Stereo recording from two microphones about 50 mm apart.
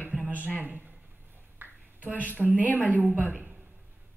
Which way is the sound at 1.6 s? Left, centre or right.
Right.